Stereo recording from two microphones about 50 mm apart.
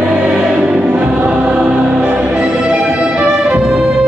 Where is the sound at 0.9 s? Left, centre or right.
Right.